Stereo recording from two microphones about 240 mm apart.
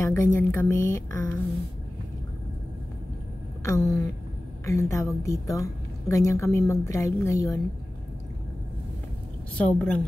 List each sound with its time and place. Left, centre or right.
0.0 s a woman's voice: centre
3.6 s a woman's voice: centre
9.6 s a woman's voice: centre